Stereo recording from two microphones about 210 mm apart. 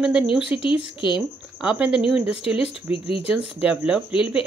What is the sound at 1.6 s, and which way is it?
Speech, 5° right (ahead or behind).